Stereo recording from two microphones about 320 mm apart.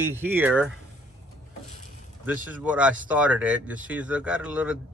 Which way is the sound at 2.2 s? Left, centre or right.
Centre.